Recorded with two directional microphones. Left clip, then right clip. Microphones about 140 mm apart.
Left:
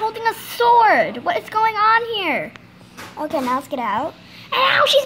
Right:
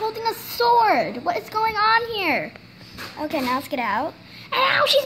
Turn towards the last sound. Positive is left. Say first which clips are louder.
# left 3 dB
turn(degrees=0)  # may be behind; listen again after turning